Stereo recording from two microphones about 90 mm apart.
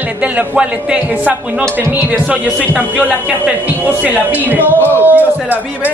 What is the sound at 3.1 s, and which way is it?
A man's voice, 15° right (ahead or behind).